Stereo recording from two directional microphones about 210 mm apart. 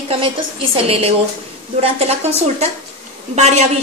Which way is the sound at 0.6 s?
30° right (ahead or behind).